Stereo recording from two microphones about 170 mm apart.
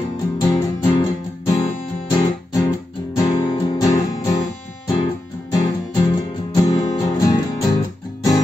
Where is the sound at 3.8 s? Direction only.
20° left (ahead or behind).